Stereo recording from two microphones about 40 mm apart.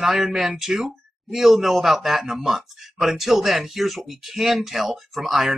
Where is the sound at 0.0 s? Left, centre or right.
Centre.